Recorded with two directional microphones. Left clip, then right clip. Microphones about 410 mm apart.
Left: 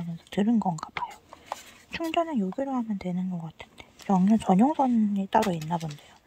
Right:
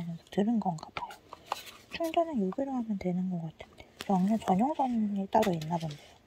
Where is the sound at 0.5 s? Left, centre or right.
Left.